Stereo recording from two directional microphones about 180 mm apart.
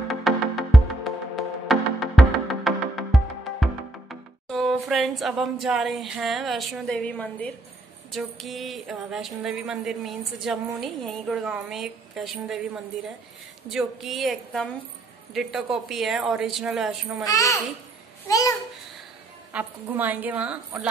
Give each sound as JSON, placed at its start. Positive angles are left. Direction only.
{"t": 0.1, "sound": "music", "side_deg": 0}
{"t": 8.1, "sound": "speech", "side_deg": 0}
{"t": 17.2, "sound": "a child's voice", "side_deg": 20}
{"t": 19.5, "sound": "a woman's voice", "side_deg": -10}